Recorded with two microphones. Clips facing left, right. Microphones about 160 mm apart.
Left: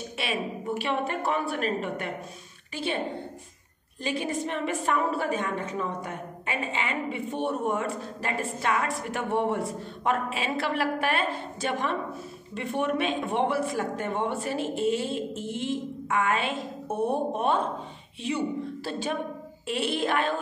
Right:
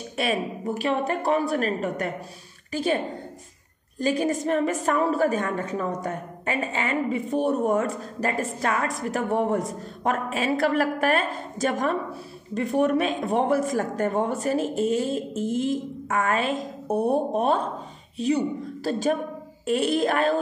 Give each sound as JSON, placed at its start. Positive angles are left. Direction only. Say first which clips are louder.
{"t": 0.2, "sound": "a woman's voice", "louder": "right 6 dB", "side_deg": -40}
{"t": 4.0, "sound": "a woman's voice", "louder": "right 6 dB", "side_deg": -40}